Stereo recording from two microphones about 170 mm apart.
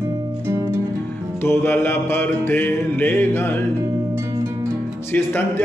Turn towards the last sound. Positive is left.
turn(degrees=10)  # may be behind; listen again after turning